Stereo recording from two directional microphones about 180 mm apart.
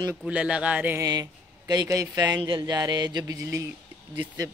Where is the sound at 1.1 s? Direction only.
20° right (ahead or behind).